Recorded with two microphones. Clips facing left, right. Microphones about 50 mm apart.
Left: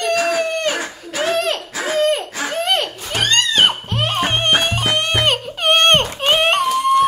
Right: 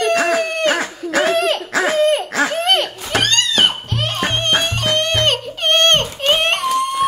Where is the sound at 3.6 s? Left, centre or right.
Centre.